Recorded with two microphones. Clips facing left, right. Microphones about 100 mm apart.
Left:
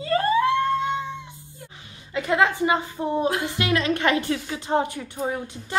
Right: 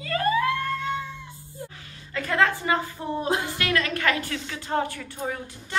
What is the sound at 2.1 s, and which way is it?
A woman's voice, 20° left (ahead or behind).